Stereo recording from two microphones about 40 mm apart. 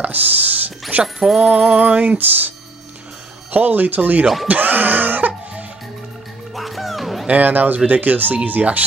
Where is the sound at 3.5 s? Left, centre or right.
Right.